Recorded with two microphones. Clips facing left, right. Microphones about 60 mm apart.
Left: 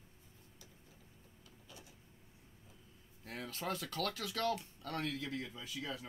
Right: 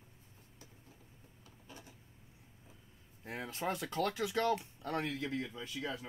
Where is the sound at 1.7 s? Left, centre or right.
Right.